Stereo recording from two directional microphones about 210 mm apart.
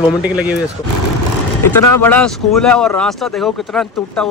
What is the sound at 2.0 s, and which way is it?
Speech, 5° left (ahead or behind).